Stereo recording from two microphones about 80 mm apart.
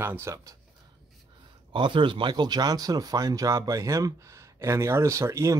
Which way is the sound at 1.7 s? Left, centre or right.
Right.